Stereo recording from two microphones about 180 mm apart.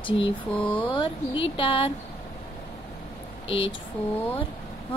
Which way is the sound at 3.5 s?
30° left (ahead or behind).